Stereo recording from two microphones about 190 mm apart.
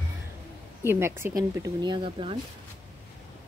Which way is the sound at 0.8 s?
15° right (ahead or behind).